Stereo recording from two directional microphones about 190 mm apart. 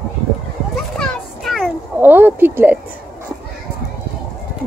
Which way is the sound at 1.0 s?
Centre (ahead or behind).